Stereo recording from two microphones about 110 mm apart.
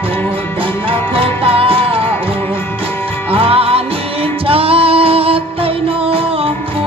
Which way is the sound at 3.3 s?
60° right (ahead or behind).